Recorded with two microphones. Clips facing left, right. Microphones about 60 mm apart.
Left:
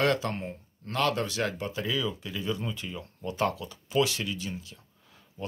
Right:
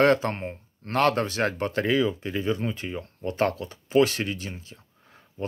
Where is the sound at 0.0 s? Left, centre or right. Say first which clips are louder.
Right 6 dB; right.